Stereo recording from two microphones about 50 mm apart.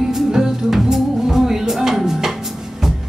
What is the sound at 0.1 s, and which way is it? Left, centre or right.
Music, centre.